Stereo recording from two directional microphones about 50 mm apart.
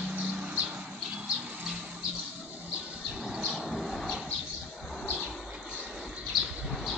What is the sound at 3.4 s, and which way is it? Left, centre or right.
Vehicle, centre.